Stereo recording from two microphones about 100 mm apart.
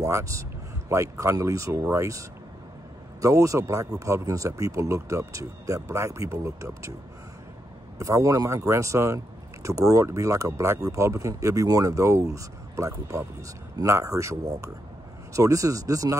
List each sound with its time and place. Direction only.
0.0 s speech: 30° right (ahead or behind)
8.0 s speech: 35° right (ahead or behind)